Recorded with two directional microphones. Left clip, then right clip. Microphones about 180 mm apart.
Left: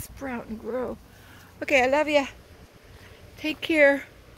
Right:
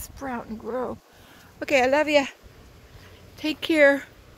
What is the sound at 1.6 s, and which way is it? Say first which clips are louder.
Speech: right 1 dB; 10° right (ahead or behind).